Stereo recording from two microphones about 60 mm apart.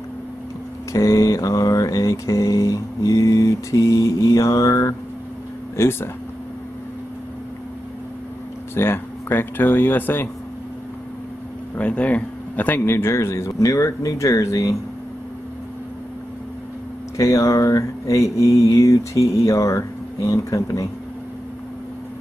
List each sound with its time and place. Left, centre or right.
0.9 s mantra: left
5.8 s speech: left
8.7 s speech: left
11.8 s speech: left
12.8 s a man's voice: left
13.5 s mantra: left
17.2 s mantra: left